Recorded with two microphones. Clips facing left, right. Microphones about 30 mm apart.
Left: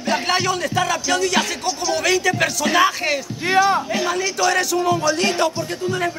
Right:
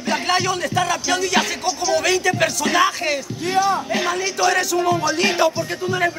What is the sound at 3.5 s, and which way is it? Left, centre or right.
Speech, left.